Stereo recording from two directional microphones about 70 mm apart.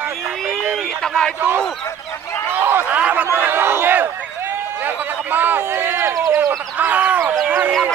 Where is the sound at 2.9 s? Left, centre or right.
Right.